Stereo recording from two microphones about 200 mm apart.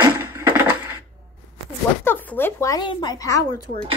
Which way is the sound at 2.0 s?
10° left (ahead or behind).